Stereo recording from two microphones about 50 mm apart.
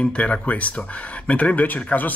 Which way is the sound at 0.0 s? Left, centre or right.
Left.